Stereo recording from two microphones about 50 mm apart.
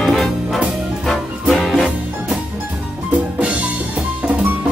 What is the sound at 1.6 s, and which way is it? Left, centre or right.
Music, centre.